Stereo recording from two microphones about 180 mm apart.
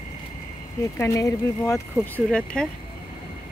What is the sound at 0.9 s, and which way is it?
Speech, 15° left (ahead or behind).